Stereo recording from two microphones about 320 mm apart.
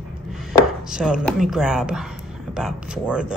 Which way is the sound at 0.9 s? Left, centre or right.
Centre.